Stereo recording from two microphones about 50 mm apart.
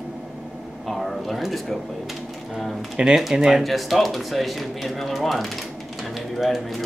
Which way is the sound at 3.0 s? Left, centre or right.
Centre.